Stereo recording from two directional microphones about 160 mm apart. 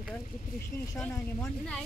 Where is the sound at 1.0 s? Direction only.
10° left (ahead or behind).